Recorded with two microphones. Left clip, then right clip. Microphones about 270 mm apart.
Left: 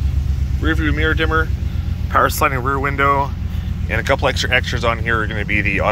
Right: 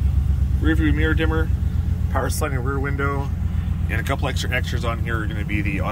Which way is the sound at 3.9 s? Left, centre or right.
Centre.